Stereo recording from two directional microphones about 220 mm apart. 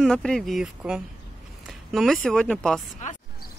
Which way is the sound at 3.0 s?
35° left (ahead or behind).